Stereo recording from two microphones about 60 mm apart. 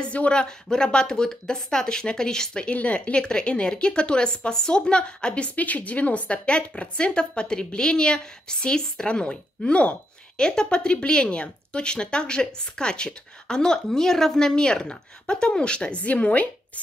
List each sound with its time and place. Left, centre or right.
0.0 s a woman's voice: centre